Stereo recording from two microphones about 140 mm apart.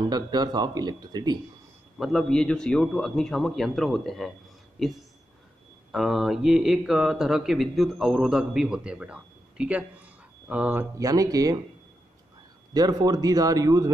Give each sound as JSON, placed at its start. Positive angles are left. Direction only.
{"t": 0.1, "sound": "speech", "side_deg": -30}
{"t": 2.0, "sound": "speech", "side_deg": 5}
{"t": 5.9, "sound": "speech", "side_deg": -5}
{"t": 11.0, "sound": "speech", "side_deg": -25}
{"t": 12.7, "sound": "speech", "side_deg": -25}